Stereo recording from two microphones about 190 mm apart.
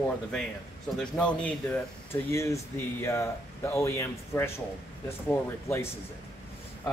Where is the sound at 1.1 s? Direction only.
10° left (ahead or behind).